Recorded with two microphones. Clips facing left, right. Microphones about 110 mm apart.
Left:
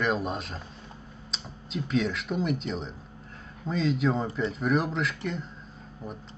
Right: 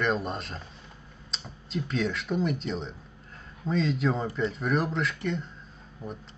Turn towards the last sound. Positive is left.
turn(degrees=0)  # may be behind; listen again after turning